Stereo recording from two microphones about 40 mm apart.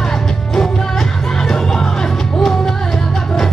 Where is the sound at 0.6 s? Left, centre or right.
Centre.